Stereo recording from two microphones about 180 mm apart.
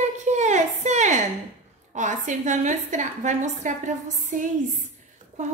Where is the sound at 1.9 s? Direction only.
45° right (ahead or behind).